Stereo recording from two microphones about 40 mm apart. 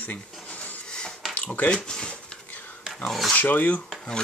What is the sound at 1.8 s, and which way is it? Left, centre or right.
Speech, centre.